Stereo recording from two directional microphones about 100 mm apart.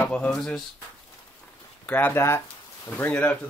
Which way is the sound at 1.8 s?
20° left (ahead or behind).